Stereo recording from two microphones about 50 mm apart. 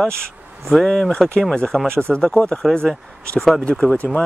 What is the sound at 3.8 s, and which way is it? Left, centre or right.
Speech, left.